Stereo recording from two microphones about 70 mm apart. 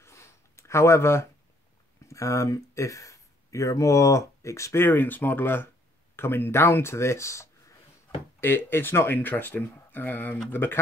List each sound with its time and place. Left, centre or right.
0.0 s a sound: left
2.0 s speech: left
4.7 s speech: left
8.4 s speech: left